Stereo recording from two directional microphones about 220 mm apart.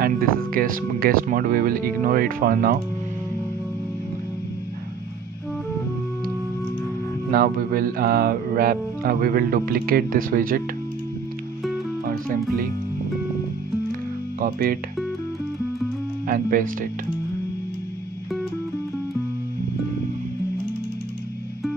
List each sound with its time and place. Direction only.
0.0 s speech: 40° right (ahead or behind)
7.2 s music: 40° right (ahead or behind)
14.4 s speech: 40° right (ahead or behind)
16.3 s speech: 40° right (ahead or behind)